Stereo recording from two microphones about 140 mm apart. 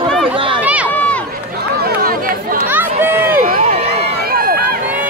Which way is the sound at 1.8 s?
90° right.